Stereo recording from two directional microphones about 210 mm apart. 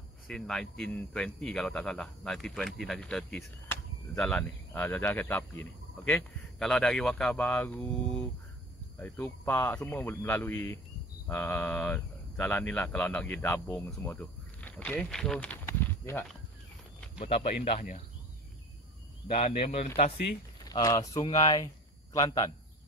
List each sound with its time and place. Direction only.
0.3 s speech: centre (ahead or behind)
9.0 s speech: 15° left (ahead or behind)
17.2 s speech: 30° left (ahead or behind)
19.2 s speech: 30° left (ahead or behind)
20.6 s speech: 20° left (ahead or behind)